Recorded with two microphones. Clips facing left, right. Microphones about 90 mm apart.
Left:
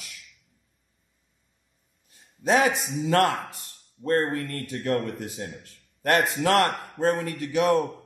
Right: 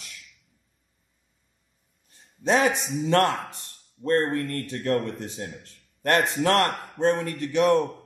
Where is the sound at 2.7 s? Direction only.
Centre (ahead or behind).